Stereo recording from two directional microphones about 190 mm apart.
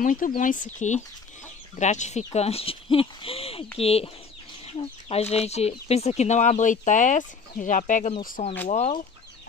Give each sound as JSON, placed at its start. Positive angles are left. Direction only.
{"t": 0.0, "sound": "speech", "side_deg": 45}
{"t": 5.1, "sound": "speech", "side_deg": 35}
{"t": 8.6, "sound": "speech", "side_deg": 30}